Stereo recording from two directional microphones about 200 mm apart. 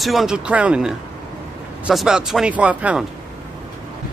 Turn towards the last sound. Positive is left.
turn(degrees=-5)  # may be behind; listen again after turning